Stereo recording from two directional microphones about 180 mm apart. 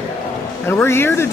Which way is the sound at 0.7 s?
10° left (ahead or behind).